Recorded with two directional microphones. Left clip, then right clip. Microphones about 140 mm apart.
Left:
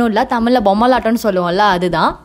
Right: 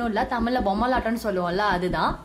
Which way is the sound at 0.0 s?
90° left.